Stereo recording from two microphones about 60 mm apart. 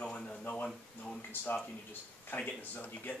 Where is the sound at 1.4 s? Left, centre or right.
Left.